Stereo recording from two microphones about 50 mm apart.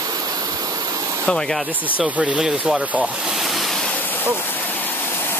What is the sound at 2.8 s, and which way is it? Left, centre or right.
Speech, right.